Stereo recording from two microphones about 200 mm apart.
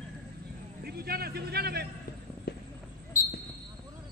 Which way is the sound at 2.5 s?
55° left (ahead or behind).